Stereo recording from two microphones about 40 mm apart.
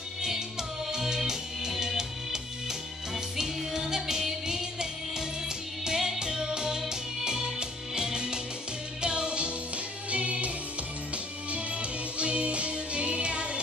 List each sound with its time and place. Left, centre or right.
0.2 s music: centre; by 10.5 s right
11.5 s music: right